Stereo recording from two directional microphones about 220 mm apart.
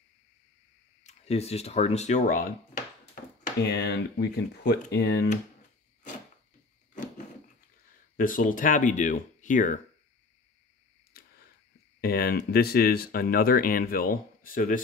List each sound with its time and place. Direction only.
1.0 s speech: 30° left (ahead or behind)
3.4 s speech: 50° left (ahead or behind)
8.2 s speech: 40° left (ahead or behind)
11.1 s a sound: 45° left (ahead or behind)
12.0 s speech: 45° left (ahead or behind)